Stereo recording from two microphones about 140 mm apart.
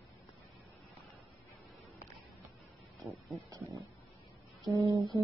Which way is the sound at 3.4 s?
25° right (ahead or behind).